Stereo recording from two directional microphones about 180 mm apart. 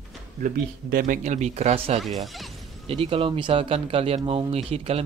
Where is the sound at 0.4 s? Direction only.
50° right (ahead or behind).